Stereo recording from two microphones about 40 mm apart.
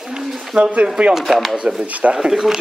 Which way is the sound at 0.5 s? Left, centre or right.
Right.